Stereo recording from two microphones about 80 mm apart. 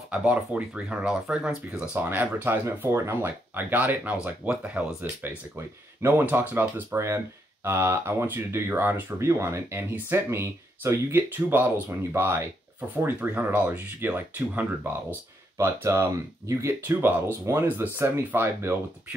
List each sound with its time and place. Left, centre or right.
0.1 s speech: centre
6.0 s speech: right
15.5 s speech: right